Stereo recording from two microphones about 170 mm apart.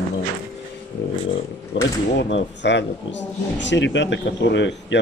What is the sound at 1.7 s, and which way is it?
Speech, 90° left.